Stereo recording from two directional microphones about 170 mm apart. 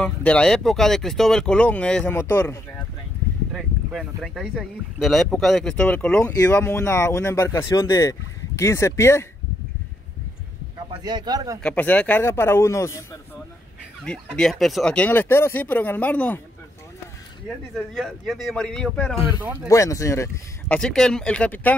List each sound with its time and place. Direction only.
0.0 s speech: 5° left (ahead or behind)
3.5 s speech: centre (ahead or behind)
6.3 s speech: 20° left (ahead or behind)
10.9 s speech: 25° right (ahead or behind)
11.6 s speech: 10° left (ahead or behind)
14.0 s speech: 5° left (ahead or behind)
17.7 s speech: centre (ahead or behind)
19.7 s speech: 20° left (ahead or behind)